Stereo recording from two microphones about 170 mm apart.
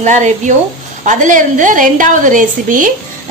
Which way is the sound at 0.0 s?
45° right (ahead or behind).